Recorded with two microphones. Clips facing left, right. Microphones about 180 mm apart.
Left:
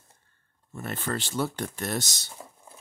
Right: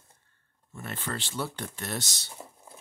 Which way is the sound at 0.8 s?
45° left (ahead or behind).